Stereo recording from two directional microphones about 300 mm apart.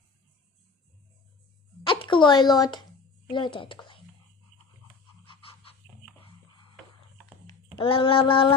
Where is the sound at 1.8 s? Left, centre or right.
Centre.